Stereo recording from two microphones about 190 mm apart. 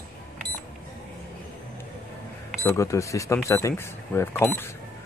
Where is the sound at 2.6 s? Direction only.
15° left (ahead or behind).